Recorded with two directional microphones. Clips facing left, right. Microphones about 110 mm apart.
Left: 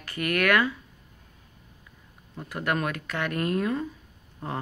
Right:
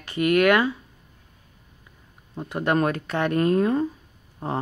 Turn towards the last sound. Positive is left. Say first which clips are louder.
# right 5 dB
turn(degrees=-30)  # may be behind; listen again after turning